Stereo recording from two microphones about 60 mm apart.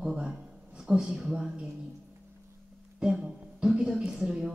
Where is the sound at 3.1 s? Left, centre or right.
Centre.